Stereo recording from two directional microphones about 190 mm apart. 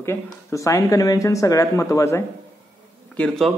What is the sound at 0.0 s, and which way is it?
A man's voice, 15° left (ahead or behind).